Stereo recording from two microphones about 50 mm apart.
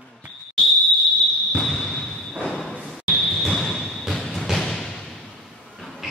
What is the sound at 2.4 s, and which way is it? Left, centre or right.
Slam, left.